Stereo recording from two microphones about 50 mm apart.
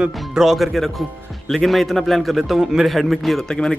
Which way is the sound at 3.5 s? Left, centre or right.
Centre.